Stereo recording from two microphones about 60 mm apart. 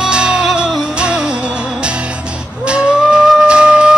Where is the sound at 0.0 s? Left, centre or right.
Centre.